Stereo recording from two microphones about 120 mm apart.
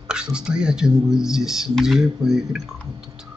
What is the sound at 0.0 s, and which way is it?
Speech, 5° right (ahead or behind).